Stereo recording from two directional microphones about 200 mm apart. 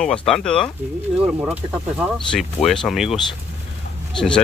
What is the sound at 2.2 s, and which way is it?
Speech, 5° left (ahead or behind).